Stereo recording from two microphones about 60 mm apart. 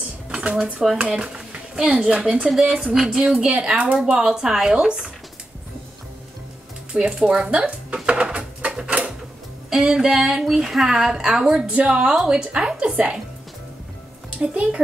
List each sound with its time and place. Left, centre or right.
0.3 s a woman's voice: centre
6.9 s a woman's voice: centre
7.4 s drawer open or close: centre
9.7 s a woman's voice: centre
14.5 s speech: right